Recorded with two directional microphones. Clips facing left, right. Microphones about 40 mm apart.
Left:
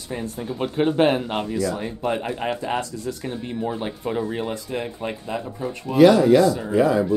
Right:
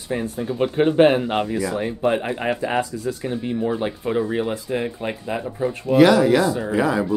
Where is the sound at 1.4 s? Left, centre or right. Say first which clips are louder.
Right 2 dB; right.